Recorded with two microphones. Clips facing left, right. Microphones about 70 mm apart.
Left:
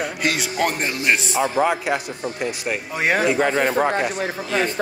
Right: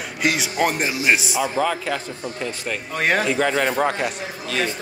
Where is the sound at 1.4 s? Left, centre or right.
Left.